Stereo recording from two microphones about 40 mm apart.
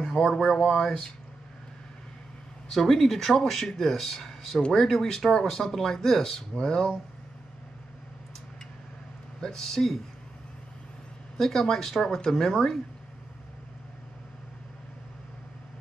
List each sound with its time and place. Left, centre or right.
0.4 s speech: centre
2.7 s speech: centre
9.4 s speech: centre
11.3 s speech: centre